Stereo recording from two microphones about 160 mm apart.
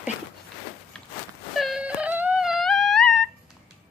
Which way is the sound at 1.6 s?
5° right (ahead or behind).